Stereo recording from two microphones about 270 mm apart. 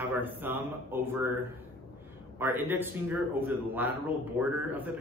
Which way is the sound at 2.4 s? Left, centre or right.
Centre.